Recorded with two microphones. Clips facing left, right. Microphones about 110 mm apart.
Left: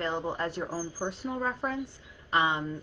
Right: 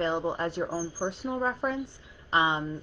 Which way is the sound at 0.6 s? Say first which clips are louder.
Right 3 dB; 5° right (ahead or behind).